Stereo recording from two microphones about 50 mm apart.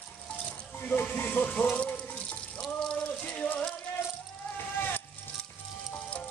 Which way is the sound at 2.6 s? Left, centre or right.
Centre.